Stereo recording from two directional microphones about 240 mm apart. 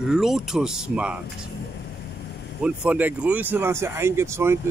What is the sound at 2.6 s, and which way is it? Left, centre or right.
Speech, centre.